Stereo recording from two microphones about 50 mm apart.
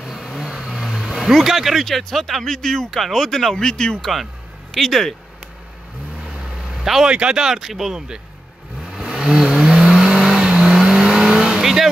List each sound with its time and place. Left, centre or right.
0.0 s vehicle: centre
0.4 s speech: centre
6.2 s vehicle: centre
7.1 s speech: centre
8.9 s vehicle: centre